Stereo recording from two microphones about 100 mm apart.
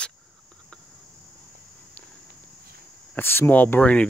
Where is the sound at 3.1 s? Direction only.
20° left (ahead or behind).